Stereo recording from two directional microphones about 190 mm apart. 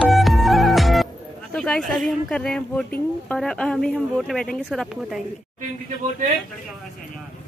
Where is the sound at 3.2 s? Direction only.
5° left (ahead or behind).